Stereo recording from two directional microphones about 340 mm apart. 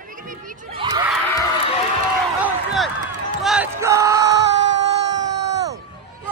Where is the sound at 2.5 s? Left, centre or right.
Centre.